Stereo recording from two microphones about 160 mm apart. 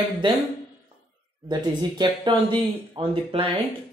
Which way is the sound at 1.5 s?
25° right (ahead or behind).